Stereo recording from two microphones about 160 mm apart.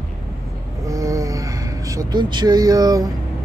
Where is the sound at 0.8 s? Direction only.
20° right (ahead or behind).